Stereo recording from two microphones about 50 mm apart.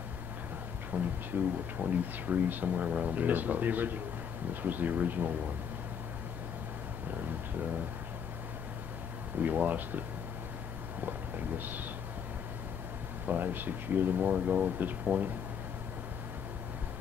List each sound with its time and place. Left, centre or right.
0.9 s speech: right
9.4 s speech: right
11.1 s a sound: right
13.3 s speech: right